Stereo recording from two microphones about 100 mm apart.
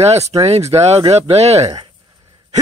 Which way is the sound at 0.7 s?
90° right.